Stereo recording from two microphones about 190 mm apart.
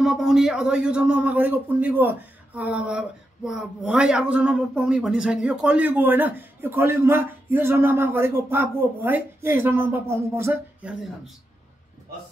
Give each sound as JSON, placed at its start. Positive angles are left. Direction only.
{"t": 0.0, "sound": "a man's voice", "side_deg": 0}